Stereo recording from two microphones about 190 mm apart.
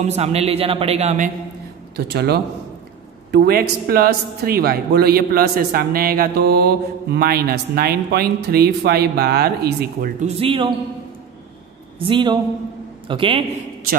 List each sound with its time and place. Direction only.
0.0 s a man's voice: 35° right (ahead or behind)
2.0 s a man's voice: 55° right (ahead or behind)
10.2 s speech: 30° right (ahead or behind)
12.0 s speech: 25° right (ahead or behind)